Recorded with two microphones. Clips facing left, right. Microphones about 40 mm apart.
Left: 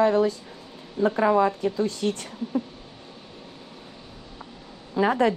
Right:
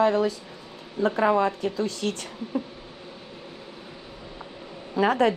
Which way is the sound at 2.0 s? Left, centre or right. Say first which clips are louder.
Left 3 dB; right.